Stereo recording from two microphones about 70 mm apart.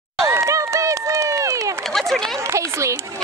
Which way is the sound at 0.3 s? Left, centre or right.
Right.